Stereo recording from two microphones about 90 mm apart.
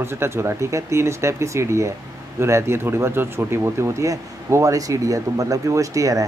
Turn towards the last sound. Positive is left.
turn(degrees=-40)  # may be behind; listen again after turning